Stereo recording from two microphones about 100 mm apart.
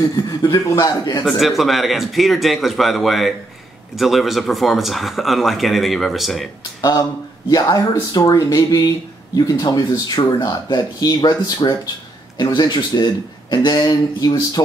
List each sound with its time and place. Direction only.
0.1 s speech: 40° left (ahead or behind)
1.2 s speech: centre (ahead or behind)
6.8 s speech: 35° left (ahead or behind)